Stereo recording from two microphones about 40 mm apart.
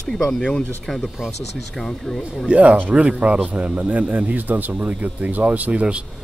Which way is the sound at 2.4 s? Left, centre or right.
Right.